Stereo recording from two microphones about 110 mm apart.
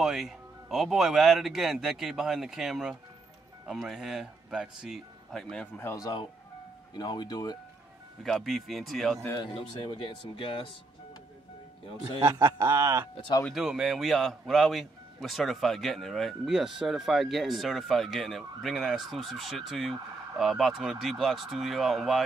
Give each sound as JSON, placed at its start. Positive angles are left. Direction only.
{"t": 0.0, "sound": "a man's voice", "side_deg": -5}
{"t": 5.8, "sound": "speech", "side_deg": 30}
{"t": 8.2, "sound": "a man's voice", "side_deg": 0}
{"t": 9.4, "sound": "speech", "side_deg": 50}
{"t": 12.2, "sound": "speech", "side_deg": -35}
{"t": 13.6, "sound": "a man's voice", "side_deg": -5}